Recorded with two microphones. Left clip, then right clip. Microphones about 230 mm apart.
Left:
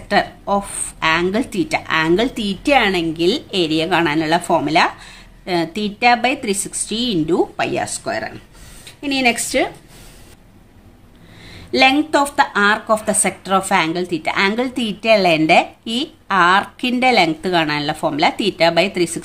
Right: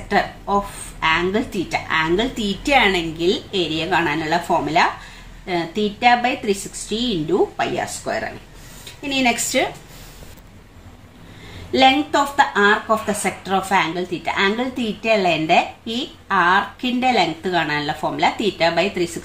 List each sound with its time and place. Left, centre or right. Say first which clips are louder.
0.1 s speech: left 2 dB; left
11.7 s speech: left 1 dB; left